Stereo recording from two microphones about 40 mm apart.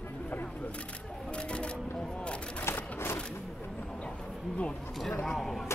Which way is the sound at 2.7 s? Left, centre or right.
Left.